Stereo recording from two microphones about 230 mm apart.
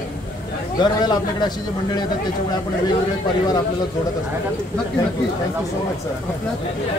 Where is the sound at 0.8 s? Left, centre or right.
Centre.